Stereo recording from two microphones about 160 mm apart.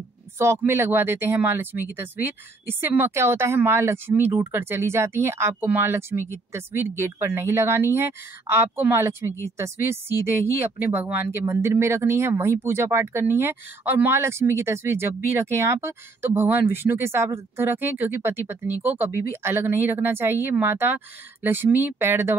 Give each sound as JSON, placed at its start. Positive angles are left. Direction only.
{"t": 0.4, "sound": "speech", "side_deg": -15}